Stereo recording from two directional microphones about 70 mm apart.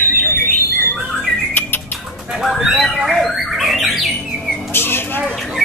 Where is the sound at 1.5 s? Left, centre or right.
Left.